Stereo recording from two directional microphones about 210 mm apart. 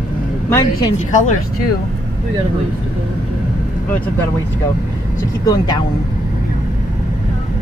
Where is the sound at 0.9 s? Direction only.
35° left (ahead or behind).